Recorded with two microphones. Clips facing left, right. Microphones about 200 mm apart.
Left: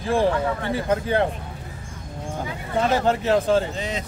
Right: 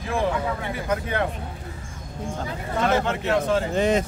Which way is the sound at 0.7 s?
30° left (ahead or behind).